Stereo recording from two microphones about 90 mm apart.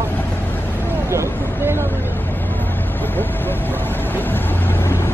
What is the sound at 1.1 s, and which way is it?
Vehicle, 30° right (ahead or behind).